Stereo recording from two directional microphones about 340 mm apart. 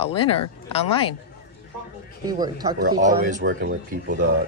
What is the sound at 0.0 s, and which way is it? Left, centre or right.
Speech, centre.